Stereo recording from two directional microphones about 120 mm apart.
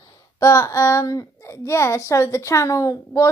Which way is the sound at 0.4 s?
25° left (ahead or behind).